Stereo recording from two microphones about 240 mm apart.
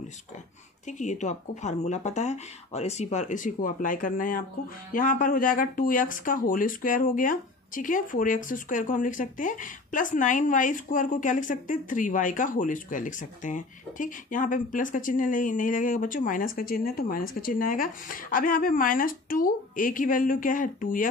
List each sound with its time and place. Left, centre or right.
0.8 s a woman's voice: left